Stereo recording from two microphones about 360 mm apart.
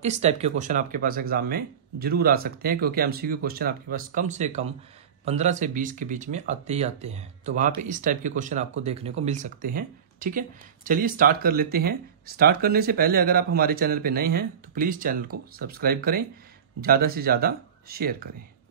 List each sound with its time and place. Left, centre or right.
0.0 s speech: centre